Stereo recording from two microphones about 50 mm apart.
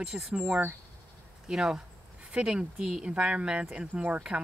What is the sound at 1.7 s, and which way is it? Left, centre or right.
Speech, right.